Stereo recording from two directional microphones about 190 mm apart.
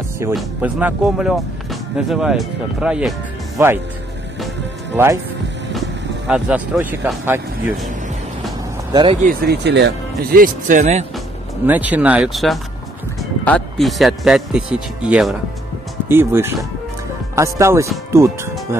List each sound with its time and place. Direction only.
0.3 s speech: 10° right (ahead or behind)
4.9 s speech: 15° right (ahead or behind)
8.9 s speech: 30° right (ahead or behind)
9.2 s speech: 50° right (ahead or behind)
11.6 s speech: 10° right (ahead or behind)